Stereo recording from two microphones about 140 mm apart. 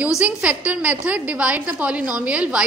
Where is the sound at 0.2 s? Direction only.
10° right (ahead or behind).